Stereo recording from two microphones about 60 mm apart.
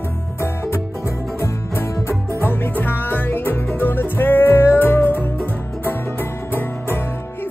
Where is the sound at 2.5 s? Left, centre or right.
Left.